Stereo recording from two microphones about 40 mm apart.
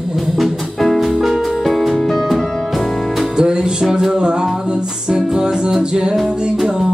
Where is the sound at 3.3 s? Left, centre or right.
Right.